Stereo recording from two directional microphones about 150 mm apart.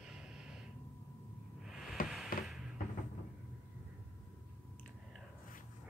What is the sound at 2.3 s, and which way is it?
Music, 75° left (ahead or behind).